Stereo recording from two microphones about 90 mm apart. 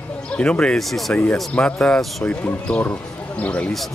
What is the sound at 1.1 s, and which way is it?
Speech, 15° left (ahead or behind).